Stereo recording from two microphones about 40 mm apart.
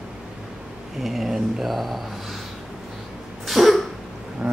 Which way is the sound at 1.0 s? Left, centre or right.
Centre.